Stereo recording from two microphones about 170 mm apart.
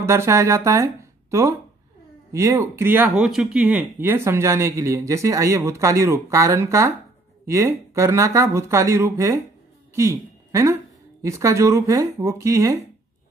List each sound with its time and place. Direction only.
0.0 s speech: 15° right (ahead or behind)
2.3 s speech: 15° right (ahead or behind)